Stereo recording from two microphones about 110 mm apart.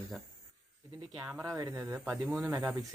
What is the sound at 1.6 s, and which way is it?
Speech, 25° right (ahead or behind).